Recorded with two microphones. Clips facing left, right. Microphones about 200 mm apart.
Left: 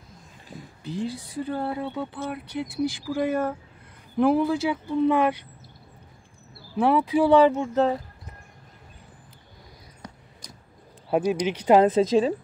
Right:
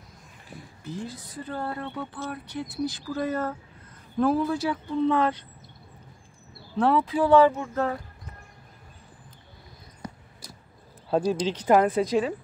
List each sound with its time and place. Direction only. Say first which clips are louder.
0.8 s a woman's voice: left 5 dB; 15° left (ahead or behind)
6.8 s a woman's voice: left 2 dB; 10° left (ahead or behind)
11.1 s a woman's voice: left 1 dB; 15° left (ahead or behind)